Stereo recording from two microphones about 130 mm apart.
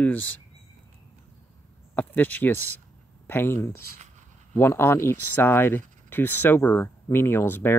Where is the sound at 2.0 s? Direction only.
15° left (ahead or behind).